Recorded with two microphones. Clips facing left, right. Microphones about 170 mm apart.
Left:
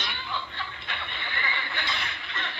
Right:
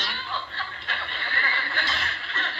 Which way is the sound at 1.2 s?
15° left (ahead or behind).